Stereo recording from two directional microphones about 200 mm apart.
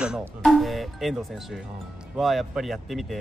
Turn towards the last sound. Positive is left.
turn(degrees=0)  # may be behind; listen again after turning